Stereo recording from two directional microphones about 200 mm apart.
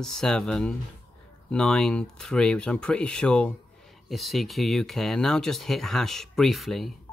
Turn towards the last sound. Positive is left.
turn(degrees=0)  # may be behind; listen again after turning